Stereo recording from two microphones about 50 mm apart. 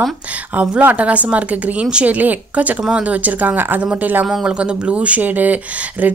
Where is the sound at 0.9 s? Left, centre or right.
Right.